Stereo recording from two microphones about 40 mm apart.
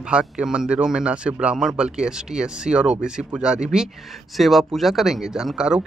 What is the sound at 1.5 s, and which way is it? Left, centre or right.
Speech, centre.